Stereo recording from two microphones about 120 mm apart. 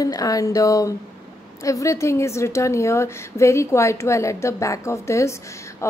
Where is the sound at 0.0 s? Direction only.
30° left (ahead or behind).